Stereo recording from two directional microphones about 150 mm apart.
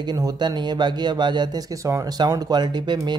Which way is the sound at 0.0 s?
30° right (ahead or behind).